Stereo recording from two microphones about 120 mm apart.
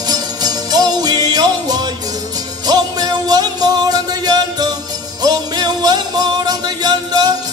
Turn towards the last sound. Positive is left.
turn(degrees=-35)  # may be behind; listen again after turning